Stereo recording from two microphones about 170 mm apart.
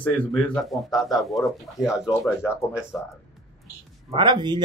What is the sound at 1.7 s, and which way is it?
Speech, 20° left (ahead or behind).